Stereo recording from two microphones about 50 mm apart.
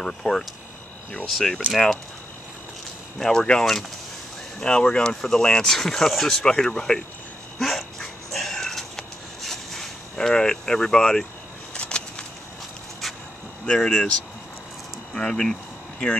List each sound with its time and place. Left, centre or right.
0.0 s speech: centre
1.7 s speech: centre
3.2 s speech: centre
7.5 s dog: centre
11.7 s a sound: left
13.7 s speech: centre
15.1 s speech: centre